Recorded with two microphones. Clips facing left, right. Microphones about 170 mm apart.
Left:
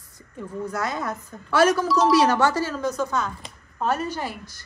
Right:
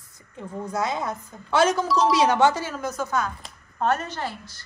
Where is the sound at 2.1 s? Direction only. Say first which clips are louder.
Left 1 dB; 20° right (ahead or behind).